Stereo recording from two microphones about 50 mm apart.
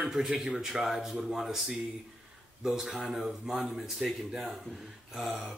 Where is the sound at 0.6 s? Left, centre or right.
Centre.